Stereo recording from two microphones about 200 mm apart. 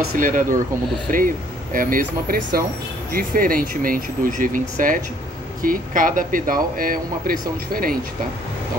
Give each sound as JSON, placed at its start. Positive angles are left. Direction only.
{"t": 0.2, "sound": "speech", "side_deg": -40}